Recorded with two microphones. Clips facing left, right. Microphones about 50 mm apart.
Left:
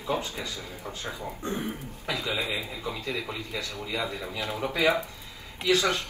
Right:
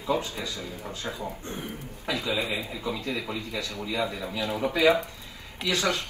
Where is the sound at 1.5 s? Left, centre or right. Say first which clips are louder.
Left 4 dB; left.